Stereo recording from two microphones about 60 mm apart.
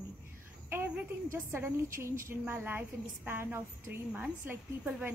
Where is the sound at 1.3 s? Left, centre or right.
Right.